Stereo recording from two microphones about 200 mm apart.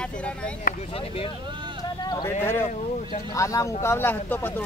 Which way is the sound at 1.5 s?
25° right (ahead or behind).